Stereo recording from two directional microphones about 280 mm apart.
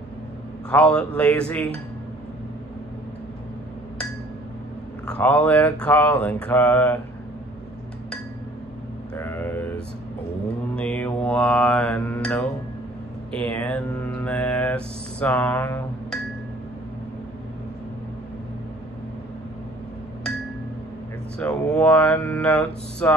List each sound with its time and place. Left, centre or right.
0.7 s mantra: centre
5.0 s mantra: centre
9.1 s vehicle: centre
10.8 s mantra: centre
21.4 s mantra: centre